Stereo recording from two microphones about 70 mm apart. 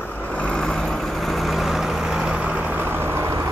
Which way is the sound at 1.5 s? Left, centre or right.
Centre.